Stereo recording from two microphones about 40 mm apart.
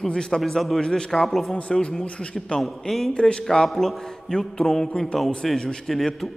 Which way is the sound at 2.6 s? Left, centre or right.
Centre.